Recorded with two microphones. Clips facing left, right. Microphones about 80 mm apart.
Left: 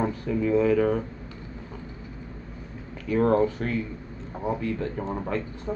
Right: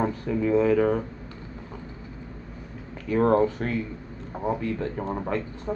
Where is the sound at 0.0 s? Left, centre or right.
Right.